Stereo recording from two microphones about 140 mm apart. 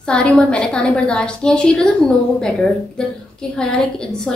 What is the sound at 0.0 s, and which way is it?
A woman's voice, 5° left (ahead or behind).